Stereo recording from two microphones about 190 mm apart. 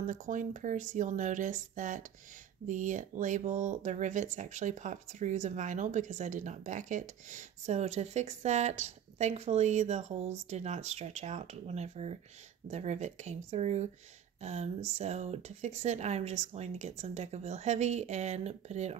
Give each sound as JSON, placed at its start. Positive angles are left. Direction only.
{"t": 0.0, "sound": "speech", "side_deg": -45}